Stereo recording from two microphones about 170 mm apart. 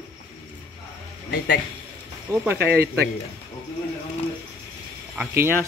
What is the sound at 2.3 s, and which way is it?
Speech, 20° right (ahead or behind).